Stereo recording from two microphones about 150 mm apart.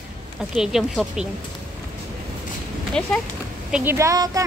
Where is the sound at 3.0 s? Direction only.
5° left (ahead or behind).